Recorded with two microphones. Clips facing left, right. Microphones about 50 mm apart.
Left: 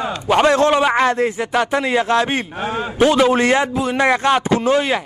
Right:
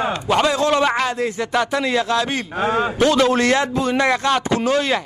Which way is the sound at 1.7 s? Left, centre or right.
Left.